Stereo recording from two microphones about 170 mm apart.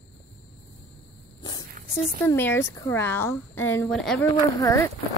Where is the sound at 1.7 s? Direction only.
50° right (ahead or behind).